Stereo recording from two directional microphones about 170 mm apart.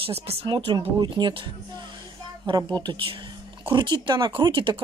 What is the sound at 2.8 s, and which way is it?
Speech, 30° right (ahead or behind).